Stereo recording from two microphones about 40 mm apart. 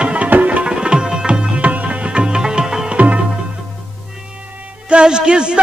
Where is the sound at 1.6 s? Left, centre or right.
Right; by 3.0 s centre.